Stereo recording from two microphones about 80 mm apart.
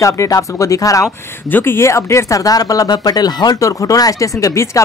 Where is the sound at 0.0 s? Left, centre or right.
Left.